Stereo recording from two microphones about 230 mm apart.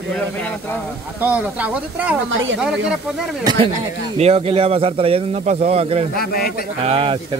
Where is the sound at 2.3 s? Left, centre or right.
Right.